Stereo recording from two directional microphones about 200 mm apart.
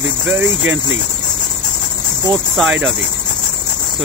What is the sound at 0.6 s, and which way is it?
Speech, 70° right (ahead or behind).